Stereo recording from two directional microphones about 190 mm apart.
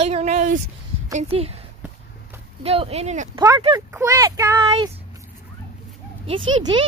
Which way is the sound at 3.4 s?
15° right (ahead or behind).